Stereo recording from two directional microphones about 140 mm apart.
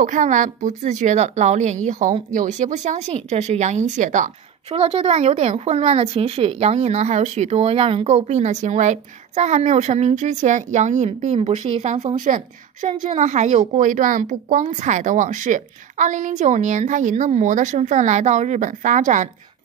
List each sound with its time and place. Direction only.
0.0 s a woman's voice: 65° right (ahead or behind)
4.6 s a woman's voice: 40° right (ahead or behind)
13.1 s a woman's voice: 60° right (ahead or behind)